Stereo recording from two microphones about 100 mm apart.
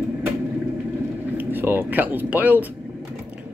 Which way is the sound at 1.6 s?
20° right (ahead or behind).